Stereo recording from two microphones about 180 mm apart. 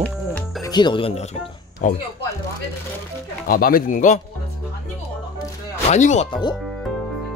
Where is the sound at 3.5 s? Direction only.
55° left (ahead or behind).